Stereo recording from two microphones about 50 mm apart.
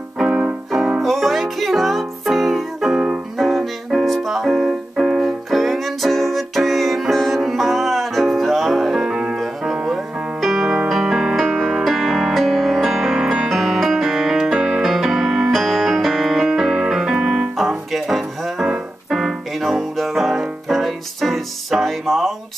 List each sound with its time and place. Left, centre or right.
0.3 s music: right
1.0 s music: centre
4.6 s keyboard: centre
5.5 s music: centre
17.6 s music: centre
18.7 s keyboard: centre